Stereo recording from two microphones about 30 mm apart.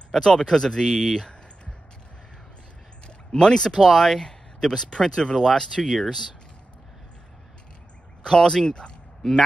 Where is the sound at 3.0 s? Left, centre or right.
Left.